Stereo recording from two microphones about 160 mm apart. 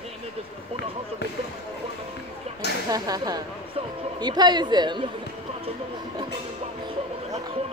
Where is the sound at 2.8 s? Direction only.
25° right (ahead or behind).